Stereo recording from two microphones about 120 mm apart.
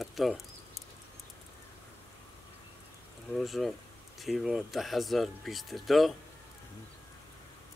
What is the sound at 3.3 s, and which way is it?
Speech, centre (ahead or behind).